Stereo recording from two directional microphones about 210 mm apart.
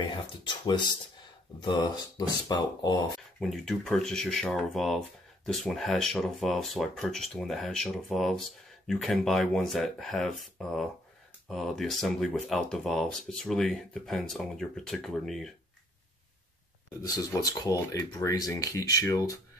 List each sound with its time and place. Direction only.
0.0 s speech: 20° left (ahead or behind)
3.3 s speech: centre (ahead or behind)
17.0 s speech: 15° left (ahead or behind)